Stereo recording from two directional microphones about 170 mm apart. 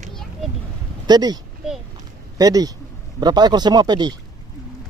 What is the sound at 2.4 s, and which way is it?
Speech, 20° right (ahead or behind).